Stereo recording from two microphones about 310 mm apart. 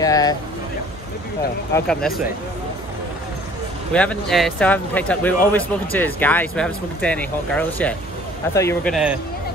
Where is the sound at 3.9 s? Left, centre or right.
Centre.